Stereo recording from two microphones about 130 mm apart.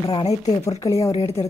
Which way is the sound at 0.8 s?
25° left (ahead or behind).